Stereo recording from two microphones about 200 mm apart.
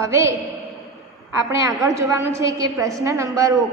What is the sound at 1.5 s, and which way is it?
A woman's voice, 15° right (ahead or behind).